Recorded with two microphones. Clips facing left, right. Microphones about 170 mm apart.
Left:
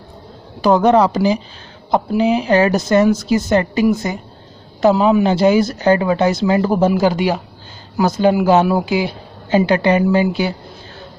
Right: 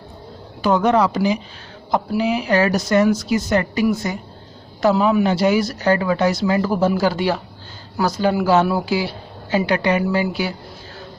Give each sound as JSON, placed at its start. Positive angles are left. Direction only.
{"t": 0.6, "sound": "speech", "side_deg": 35}